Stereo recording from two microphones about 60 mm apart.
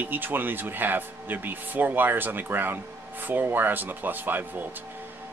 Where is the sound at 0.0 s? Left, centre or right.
Right.